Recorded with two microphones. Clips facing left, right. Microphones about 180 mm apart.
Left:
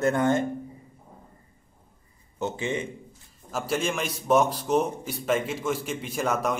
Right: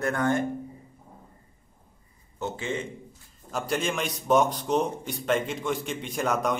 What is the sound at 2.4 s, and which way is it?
Speech, 15° left (ahead or behind).